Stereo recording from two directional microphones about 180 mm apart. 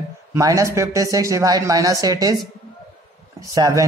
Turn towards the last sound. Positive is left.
turn(degrees=-20)  # may be behind; listen again after turning